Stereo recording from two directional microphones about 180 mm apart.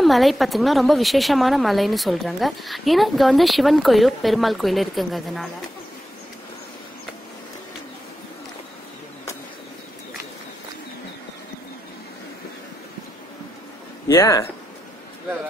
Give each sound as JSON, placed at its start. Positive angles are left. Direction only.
{"t": 0.0, "sound": "a woman's voice", "side_deg": 0}
{"t": 14.0, "sound": "speech", "side_deg": 15}